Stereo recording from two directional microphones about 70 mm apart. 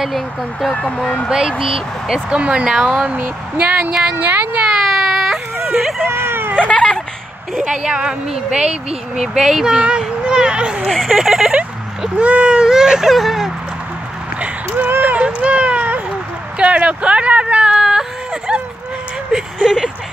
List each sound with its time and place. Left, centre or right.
0.0 s speech: centre
2.2 s speech: centre
4.6 s baby cry: centre
5.8 s speech: centre
6.0 s a sound: right
6.5 s a sound: centre
7.5 s speech: centre
10.9 s speech: centre
12.0 s speech: centre
14.9 s a sound: right
16.5 s whimper: centre
19.3 s a sound: centre